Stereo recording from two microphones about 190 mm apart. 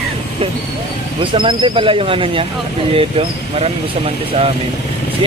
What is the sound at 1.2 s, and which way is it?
Speech, 25° right (ahead or behind).